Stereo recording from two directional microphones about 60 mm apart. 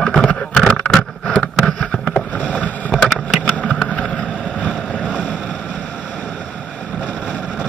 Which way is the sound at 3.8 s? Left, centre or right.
Left.